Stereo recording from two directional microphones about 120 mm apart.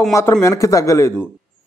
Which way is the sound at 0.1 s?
25° left (ahead or behind).